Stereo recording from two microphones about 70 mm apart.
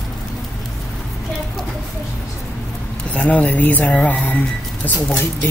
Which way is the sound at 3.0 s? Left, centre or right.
Left.